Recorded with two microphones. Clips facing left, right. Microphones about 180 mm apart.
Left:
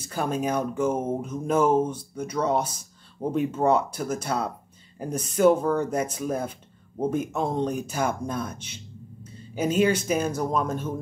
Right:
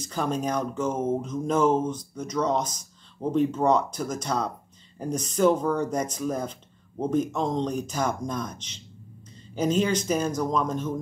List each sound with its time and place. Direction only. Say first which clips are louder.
0.0 s speech: left 1 dB; 10° left (ahead or behind)